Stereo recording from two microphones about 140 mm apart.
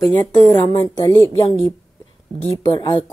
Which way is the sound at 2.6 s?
30° left (ahead or behind).